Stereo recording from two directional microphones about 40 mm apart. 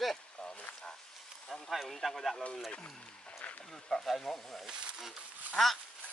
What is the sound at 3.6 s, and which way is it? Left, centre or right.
Speech, centre.